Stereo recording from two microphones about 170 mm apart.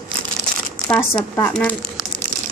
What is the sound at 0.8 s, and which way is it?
Speech, 5° left (ahead or behind).